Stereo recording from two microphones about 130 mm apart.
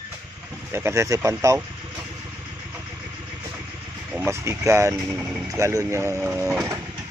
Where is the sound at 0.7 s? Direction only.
20° right (ahead or behind).